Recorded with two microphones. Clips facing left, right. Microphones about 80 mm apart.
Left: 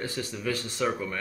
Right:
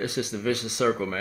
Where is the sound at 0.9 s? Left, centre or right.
Right.